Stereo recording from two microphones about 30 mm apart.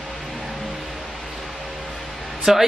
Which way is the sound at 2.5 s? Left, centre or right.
Centre.